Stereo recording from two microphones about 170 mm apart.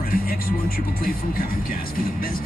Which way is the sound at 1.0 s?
55° left (ahead or behind).